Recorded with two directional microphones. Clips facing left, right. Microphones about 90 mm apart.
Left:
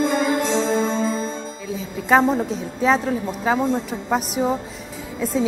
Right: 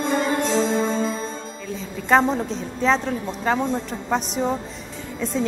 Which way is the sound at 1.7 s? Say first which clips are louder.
Left 1 dB; 5° left (ahead or behind).